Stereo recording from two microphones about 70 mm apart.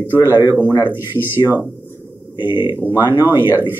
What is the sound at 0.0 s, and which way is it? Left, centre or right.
Speech, right.